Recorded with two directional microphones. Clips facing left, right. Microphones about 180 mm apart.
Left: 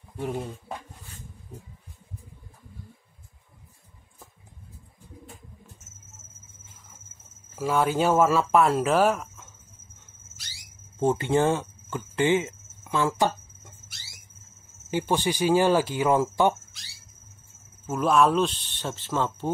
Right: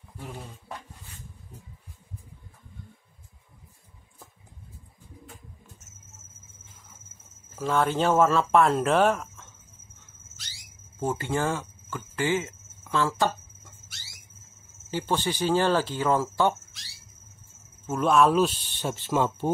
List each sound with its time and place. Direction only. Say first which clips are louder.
0.7 s speech: left 3 dB; 20° left (ahead or behind)
7.5 s speech: left 1 dB; 10° left (ahead or behind)
11.0 s speech: left 5 dB; 25° left (ahead or behind)
14.9 s speech: left 2 dB; 15° left (ahead or behind)
17.8 s speech: even; centre (ahead or behind)